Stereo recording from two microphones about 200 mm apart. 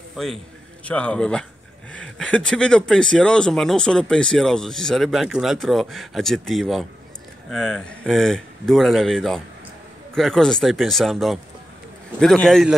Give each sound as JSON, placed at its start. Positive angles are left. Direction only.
{"t": 0.2, "sound": "speech", "side_deg": 0}